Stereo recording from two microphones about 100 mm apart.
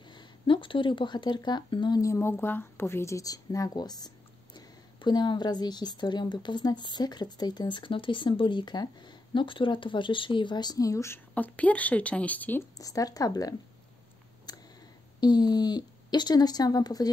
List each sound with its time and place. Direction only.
0.1 s speech: 55° left (ahead or behind)
2.0 s a woman's voice: 30° left (ahead or behind)
11.3 s speech: 15° left (ahead or behind)
12.7 s speech: 35° left (ahead or behind)
14.5 s a sound: 45° left (ahead or behind)
15.1 s a woman's voice: 45° left (ahead or behind)